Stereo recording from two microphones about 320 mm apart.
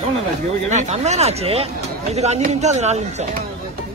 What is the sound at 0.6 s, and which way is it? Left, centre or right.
Speech, right.